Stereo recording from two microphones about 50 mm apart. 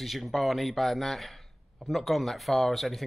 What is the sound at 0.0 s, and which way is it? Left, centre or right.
Speech, centre.